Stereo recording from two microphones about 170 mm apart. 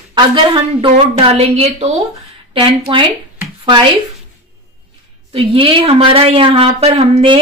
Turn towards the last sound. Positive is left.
turn(degrees=-35)  # may be behind; listen again after turning